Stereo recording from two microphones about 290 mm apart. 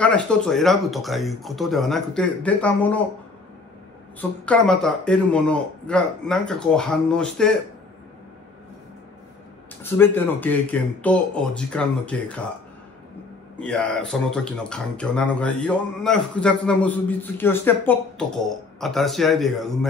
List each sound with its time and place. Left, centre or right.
0.0 s speech: centre
4.2 s speech: centre
9.8 s speech: centre
13.6 s speech: centre